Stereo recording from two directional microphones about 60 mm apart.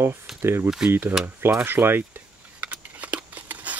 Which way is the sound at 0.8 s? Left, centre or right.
Right.